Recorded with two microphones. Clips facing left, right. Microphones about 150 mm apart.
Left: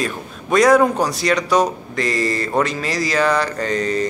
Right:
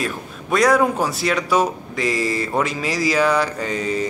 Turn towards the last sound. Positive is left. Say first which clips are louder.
# left 3 dB
turn(degrees=-10)  # may be behind; listen again after turning